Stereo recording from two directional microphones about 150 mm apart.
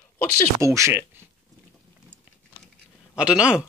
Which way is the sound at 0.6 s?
20° right (ahead or behind).